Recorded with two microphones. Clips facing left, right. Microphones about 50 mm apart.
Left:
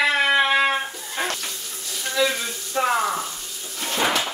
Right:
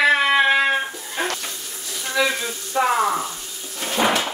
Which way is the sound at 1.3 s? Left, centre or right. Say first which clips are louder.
Right 1 dB; centre.